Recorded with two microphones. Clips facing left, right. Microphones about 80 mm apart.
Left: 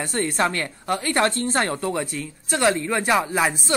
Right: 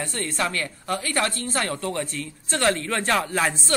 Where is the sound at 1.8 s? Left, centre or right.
Centre.